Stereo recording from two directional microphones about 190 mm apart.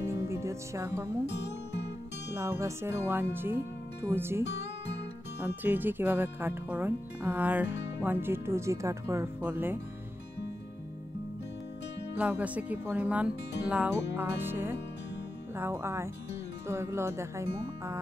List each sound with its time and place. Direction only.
0.0 s music: 15° right (ahead or behind)
1.2 s speech: 65° left (ahead or behind)
2.3 s speech: 15° right (ahead or behind)
5.6 s speech: 10° right (ahead or behind)
12.2 s speech: 10° right (ahead or behind)